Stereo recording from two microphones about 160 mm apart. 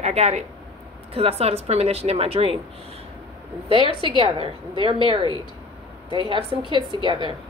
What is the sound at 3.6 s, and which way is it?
Speech, 35° left (ahead or behind).